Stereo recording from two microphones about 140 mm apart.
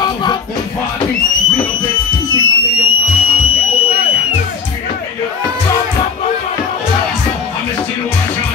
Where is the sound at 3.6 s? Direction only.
45° left (ahead or behind).